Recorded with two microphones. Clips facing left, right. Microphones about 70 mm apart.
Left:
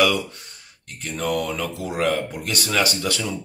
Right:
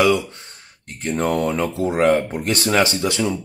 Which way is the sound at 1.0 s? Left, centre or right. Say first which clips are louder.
Right 5 dB; right.